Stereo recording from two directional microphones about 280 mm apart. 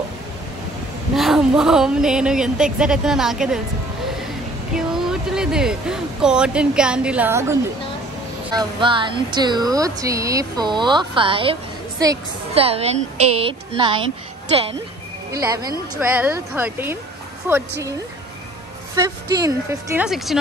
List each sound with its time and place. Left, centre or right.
1.1 s speech: centre
4.7 s speech: centre
8.5 s a woman's voice: centre
15.4 s speech: centre
18.9 s speech: centre